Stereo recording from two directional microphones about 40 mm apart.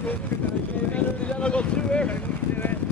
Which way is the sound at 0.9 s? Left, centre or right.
Left.